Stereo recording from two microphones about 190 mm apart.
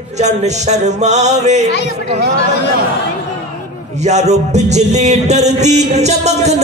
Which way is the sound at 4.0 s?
35° right (ahead or behind).